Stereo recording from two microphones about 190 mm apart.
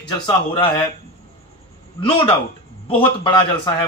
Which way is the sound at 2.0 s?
30° left (ahead or behind).